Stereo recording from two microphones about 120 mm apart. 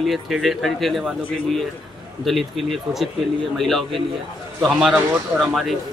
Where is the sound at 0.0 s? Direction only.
Centre (ahead or behind).